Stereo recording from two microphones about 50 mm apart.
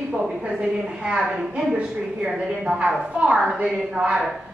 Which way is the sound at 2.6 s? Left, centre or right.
Right.